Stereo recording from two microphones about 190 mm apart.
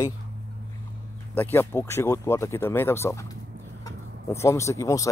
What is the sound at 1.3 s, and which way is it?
Speech, 10° left (ahead or behind).